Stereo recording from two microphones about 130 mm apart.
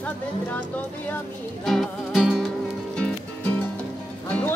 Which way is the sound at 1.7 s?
Centre (ahead or behind).